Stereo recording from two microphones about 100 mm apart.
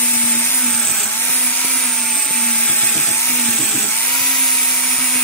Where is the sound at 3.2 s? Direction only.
15° left (ahead or behind).